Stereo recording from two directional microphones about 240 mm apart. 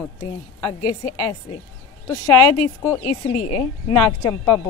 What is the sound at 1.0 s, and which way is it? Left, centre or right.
Speech, left.